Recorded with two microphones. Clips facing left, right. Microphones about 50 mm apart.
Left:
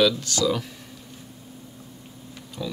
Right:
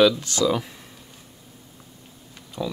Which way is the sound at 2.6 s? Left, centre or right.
Centre.